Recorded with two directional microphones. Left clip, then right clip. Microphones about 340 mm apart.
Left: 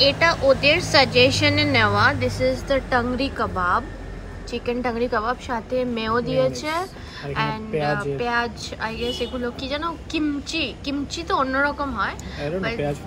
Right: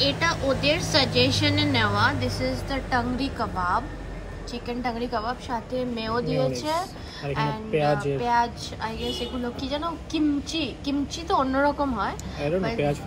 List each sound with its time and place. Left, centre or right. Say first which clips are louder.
0.2 s a woman's voice: left 7 dB; centre
1.0 s a woman's voice: left 6 dB; centre
1.5 s a woman's voice: left 5 dB; centre